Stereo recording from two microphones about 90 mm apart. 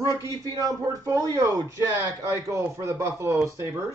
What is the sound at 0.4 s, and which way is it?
A man's voice, 40° right (ahead or behind).